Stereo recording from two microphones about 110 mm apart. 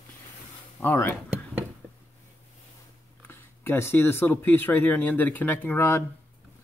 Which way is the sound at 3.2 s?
20° left (ahead or behind).